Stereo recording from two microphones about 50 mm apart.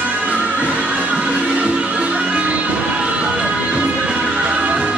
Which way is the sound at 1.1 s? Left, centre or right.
Right.